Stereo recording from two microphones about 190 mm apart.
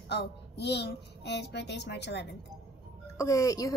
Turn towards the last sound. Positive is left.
turn(degrees=15)  # may be behind; listen again after turning